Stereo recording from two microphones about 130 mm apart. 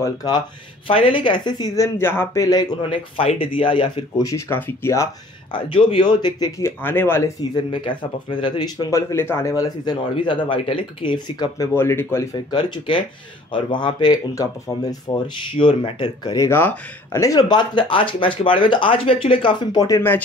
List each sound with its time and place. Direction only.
0.0 s speech: 30° left (ahead or behind)
0.8 s speech: 45° left (ahead or behind)
2.0 s speech: 20° left (ahead or behind)
3.2 s speech: 45° left (ahead or behind)
4.2 s speech: 25° left (ahead or behind)
5.5 s speech: 45° left (ahead or behind)
6.6 s speech: 15° left (ahead or behind)
8.4 s speech: 35° left (ahead or behind)
8.9 s speech: 20° left (ahead or behind)
10.2 s speech: 40° left (ahead or behind)
11.7 s speech: 20° left (ahead or behind)
15.5 s speech: 40° left (ahead or behind)
16.4 s speech: 20° left (ahead or behind)